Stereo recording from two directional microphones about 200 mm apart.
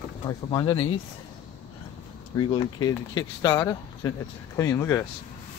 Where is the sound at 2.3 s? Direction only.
20° left (ahead or behind).